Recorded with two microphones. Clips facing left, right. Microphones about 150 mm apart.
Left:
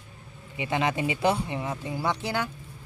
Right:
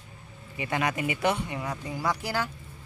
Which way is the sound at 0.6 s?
20° left (ahead or behind).